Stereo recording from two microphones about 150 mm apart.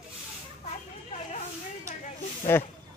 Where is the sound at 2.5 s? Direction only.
15° left (ahead or behind).